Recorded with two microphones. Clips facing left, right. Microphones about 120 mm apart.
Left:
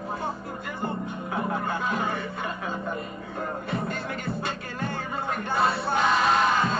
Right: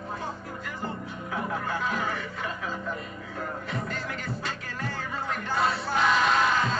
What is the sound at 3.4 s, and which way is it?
Music, 30° left (ahead or behind).